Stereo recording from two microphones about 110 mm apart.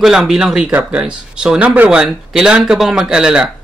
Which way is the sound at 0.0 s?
5° right (ahead or behind).